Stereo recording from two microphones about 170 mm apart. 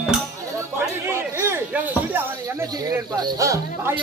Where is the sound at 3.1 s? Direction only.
20° right (ahead or behind).